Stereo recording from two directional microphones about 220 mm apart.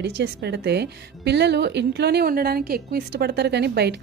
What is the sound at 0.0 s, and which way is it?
Speech, 50° right (ahead or behind).